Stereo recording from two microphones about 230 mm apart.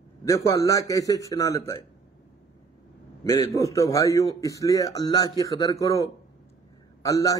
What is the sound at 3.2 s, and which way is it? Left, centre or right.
A man's voice, centre.